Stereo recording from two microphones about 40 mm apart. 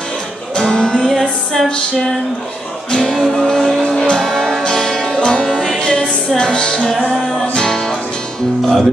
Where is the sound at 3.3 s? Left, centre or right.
Centre.